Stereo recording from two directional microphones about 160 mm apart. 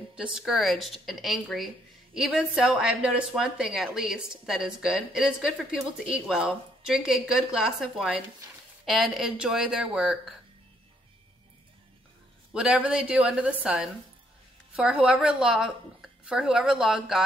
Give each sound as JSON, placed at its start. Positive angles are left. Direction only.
{"t": 0.1, "sound": "a woman's voice", "side_deg": -5}
{"t": 12.5, "sound": "a woman's voice", "side_deg": -5}